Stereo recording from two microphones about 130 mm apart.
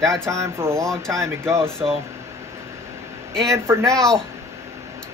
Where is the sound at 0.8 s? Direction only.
5° left (ahead or behind).